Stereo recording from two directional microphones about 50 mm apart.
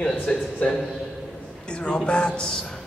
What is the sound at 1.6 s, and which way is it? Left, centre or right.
Speech, left.